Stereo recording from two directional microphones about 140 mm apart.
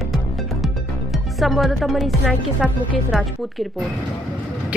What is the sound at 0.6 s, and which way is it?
Music, centre (ahead or behind).